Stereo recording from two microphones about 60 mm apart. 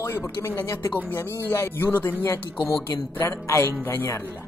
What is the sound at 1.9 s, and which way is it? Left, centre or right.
Speech, left.